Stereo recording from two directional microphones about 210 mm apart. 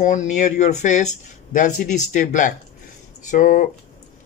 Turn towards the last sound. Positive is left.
turn(degrees=40)  # may be behind; listen again after turning